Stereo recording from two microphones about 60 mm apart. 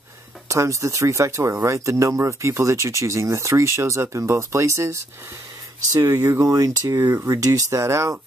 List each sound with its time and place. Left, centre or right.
0.5 s speech: right
5.9 s speech: right